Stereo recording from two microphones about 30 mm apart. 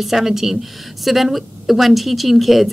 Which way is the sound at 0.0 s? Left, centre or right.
Centre.